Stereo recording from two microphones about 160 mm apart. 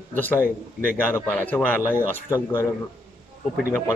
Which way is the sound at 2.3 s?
20° left (ahead or behind).